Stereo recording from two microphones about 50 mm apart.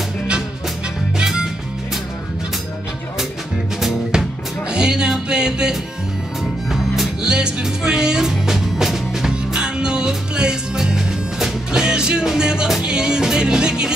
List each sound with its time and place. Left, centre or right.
1.1 s music: centre
3.8 s music: centre
6.4 s music: centre
7.2 s music: centre